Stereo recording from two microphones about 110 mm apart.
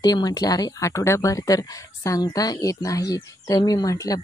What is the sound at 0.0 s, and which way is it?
Speech, 35° left (ahead or behind).